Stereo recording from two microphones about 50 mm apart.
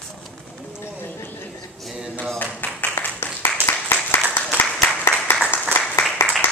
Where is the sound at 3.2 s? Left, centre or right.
Left.